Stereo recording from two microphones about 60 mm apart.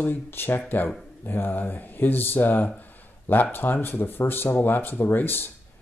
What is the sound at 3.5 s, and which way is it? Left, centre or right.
Speech, left.